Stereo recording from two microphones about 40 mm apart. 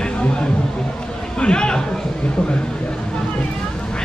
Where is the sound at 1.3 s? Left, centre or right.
Left.